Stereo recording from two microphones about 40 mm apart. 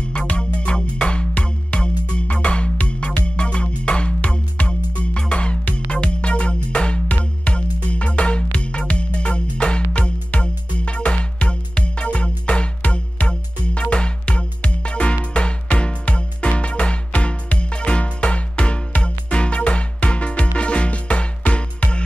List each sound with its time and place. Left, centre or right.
0.1 s music: left